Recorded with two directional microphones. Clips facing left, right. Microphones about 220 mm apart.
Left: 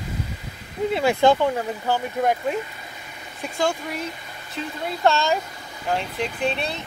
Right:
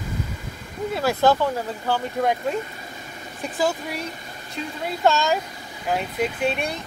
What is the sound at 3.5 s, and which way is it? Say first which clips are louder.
Speech: even; 5° right (ahead or behind).